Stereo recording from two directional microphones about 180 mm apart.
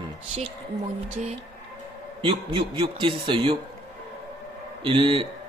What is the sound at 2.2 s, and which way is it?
Speech, 30° right (ahead or behind).